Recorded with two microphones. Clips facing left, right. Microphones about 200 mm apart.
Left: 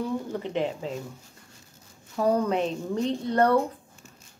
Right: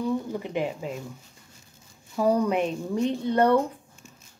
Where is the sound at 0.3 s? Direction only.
10° right (ahead or behind).